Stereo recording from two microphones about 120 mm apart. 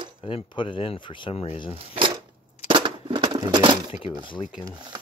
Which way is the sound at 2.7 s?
45° right (ahead or behind).